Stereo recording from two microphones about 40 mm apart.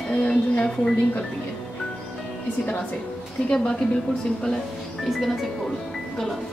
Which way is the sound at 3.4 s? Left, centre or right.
Left.